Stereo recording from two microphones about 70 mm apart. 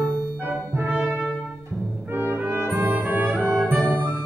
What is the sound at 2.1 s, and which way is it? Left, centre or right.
Brass instrument, right.